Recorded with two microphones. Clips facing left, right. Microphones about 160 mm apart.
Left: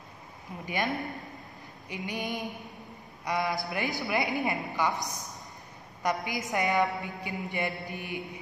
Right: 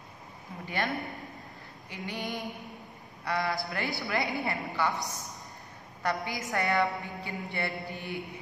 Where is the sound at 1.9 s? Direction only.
15° left (ahead or behind).